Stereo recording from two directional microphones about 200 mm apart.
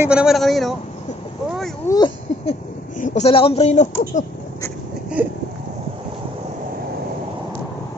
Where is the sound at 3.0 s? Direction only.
35° left (ahead or behind).